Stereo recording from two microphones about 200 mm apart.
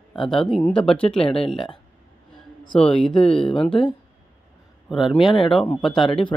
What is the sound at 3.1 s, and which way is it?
Speech, 25° left (ahead or behind).